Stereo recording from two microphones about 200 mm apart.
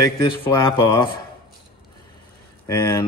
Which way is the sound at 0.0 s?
15° left (ahead or behind).